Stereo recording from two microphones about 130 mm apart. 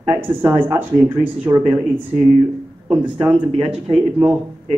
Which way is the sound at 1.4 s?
35° right (ahead or behind).